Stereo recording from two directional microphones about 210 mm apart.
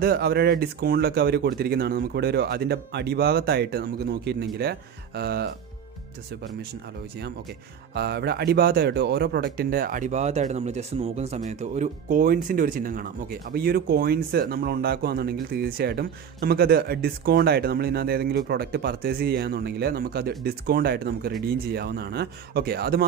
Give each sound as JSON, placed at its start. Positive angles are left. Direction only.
{"t": 0.0, "sound": "speech", "side_deg": -45}
{"t": 7.9, "sound": "speech", "side_deg": -50}